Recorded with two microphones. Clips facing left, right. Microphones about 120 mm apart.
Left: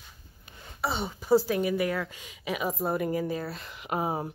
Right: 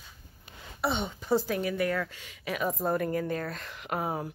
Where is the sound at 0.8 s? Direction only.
5° left (ahead or behind).